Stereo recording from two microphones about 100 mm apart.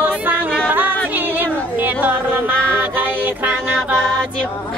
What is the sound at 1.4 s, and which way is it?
Music, 20° right (ahead or behind).